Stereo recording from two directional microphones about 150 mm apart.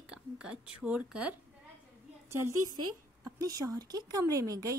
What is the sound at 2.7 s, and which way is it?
Speech, 25° right (ahead or behind).